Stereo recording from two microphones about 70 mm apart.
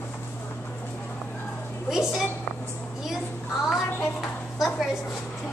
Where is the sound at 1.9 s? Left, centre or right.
Centre.